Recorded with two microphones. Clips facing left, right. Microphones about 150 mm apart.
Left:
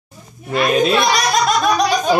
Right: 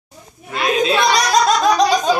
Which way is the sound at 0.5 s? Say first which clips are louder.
Left 2 dB; 65° left (ahead or behind).